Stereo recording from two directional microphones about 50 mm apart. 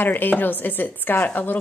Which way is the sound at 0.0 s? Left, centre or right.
Left.